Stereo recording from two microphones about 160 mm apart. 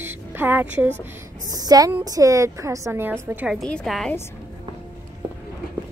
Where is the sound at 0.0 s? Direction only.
15° right (ahead or behind).